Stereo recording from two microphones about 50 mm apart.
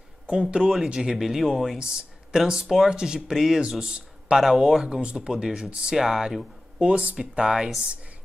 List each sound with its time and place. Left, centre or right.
0.3 s speech: centre
1.1 s speech: centre
1.8 s speech: centre
3.8 s a sound: centre
4.4 s speech: centre; by 5.9 s right
5.9 s speech: centre
6.8 s speech: right
7.3 s speech: centre